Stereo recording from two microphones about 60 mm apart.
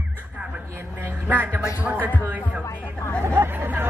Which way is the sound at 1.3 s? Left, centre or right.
Right.